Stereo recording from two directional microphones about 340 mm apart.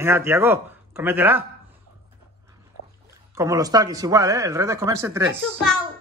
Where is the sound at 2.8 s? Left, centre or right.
Left.